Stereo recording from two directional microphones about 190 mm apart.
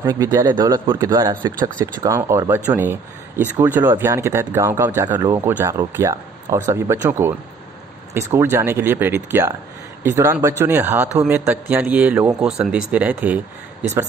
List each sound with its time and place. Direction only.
0.0 s speech: 20° right (ahead or behind)